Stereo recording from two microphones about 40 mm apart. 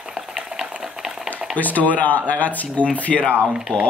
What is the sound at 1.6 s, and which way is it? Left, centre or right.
Speech, left.